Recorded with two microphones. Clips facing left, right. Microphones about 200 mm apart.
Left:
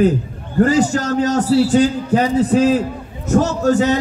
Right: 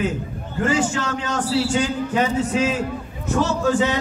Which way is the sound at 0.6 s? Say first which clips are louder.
Left 7 dB; 40° left (ahead or behind).